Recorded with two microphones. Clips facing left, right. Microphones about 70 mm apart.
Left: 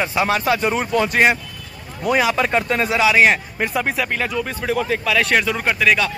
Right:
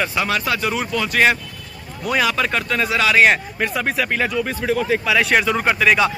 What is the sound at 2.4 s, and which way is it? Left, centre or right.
Speech, left.